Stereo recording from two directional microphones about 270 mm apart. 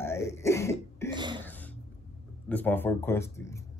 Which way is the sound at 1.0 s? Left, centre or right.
Centre.